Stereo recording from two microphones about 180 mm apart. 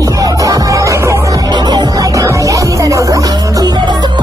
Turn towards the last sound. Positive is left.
turn(degrees=-25)  # may be behind; listen again after turning